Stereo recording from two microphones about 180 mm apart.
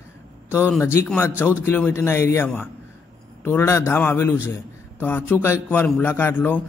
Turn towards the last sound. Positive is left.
turn(degrees=10)  # may be behind; listen again after turning